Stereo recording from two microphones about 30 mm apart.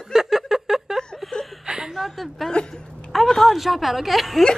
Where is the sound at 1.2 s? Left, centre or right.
Centre.